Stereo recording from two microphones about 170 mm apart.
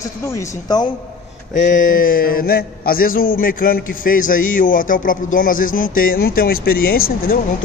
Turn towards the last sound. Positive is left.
turn(degrees=60)  # may be behind; listen again after turning